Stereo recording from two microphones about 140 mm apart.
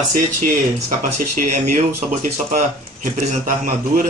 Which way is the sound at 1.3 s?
60° right (ahead or behind).